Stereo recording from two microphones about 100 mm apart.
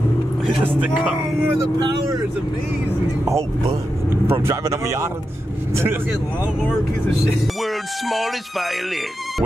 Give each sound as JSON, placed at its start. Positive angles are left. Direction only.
{"t": 0.7, "sound": "speech", "side_deg": -15}
{"t": 1.6, "sound": "speech", "side_deg": -35}
{"t": 4.3, "sound": "speech", "side_deg": -30}
{"t": 7.6, "sound": "speech", "side_deg": 0}